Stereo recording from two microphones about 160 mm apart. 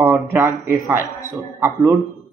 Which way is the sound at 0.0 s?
15° right (ahead or behind).